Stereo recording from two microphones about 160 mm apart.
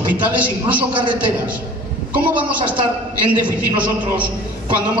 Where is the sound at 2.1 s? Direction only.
10° right (ahead or behind).